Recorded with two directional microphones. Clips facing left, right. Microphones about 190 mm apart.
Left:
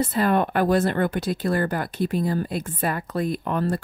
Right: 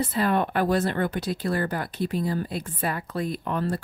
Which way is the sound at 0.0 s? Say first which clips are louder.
Left 3 dB; 50° left (ahead or behind).